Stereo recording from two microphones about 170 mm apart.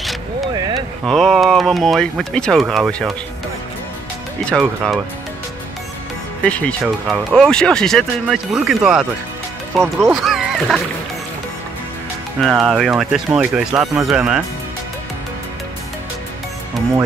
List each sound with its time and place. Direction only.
0.6 s a sound: 25° right (ahead or behind)
1.0 s speech: centre (ahead or behind)
4.5 s speech: centre (ahead or behind)
6.4 s speech: 5° left (ahead or behind)
10.2 s rowboat: centre (ahead or behind)
12.4 s speech: centre (ahead or behind)